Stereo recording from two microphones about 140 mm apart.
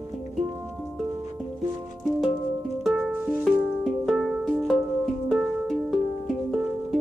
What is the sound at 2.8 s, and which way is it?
Music, 5° right (ahead or behind).